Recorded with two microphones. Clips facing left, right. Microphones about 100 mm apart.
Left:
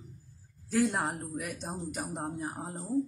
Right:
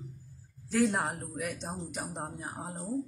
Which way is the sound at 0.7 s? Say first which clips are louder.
Even; centre (ahead or behind).